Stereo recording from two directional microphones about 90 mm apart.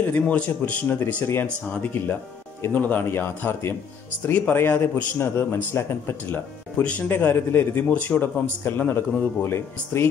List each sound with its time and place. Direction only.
0.0 s speech: 15° left (ahead or behind)
0.9 s speech: 30° left (ahead or behind)
6.8 s speech: 15° left (ahead or behind)